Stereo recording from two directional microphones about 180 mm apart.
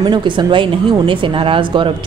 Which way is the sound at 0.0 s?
25° right (ahead or behind).